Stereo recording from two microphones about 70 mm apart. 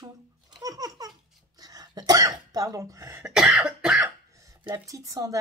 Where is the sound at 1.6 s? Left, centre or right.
Right.